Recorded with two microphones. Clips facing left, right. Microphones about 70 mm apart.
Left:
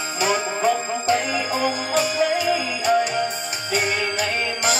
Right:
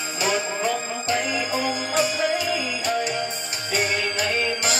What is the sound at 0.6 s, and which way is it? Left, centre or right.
Music, left.